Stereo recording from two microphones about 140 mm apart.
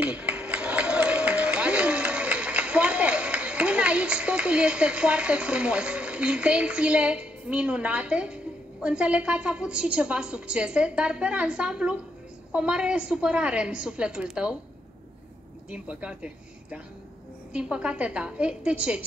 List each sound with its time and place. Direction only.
0.0 s a sound: 10° right (ahead or behind)
8.8 s a woman's voice: 10° right (ahead or behind)
15.7 s a woman's voice: 10° right (ahead or behind)
17.5 s a woman's voice: 5° right (ahead or behind)